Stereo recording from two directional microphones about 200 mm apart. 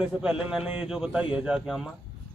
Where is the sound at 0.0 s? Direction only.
5° right (ahead or behind).